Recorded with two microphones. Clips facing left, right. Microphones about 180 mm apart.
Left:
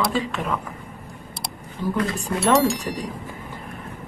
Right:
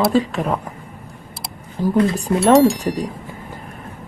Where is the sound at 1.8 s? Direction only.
40° right (ahead or behind).